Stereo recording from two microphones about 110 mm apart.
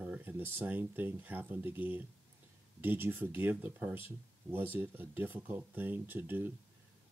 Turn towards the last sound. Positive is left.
turn(degrees=-20)  # may be behind; listen again after turning